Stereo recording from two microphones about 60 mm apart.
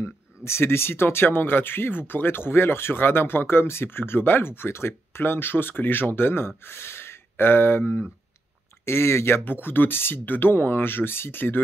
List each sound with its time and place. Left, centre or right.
0.0 s speech: left